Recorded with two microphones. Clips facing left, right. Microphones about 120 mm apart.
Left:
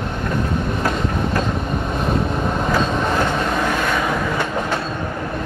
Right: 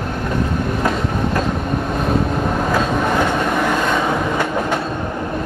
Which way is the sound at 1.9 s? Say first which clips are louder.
Right 2 dB; 5° right (ahead or behind).